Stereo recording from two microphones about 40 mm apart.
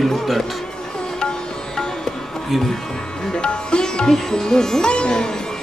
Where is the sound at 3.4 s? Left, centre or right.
Left.